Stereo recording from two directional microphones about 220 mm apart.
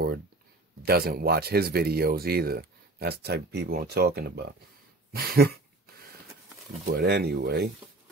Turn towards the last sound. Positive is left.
turn(degrees=-45)  # may be behind; listen again after turning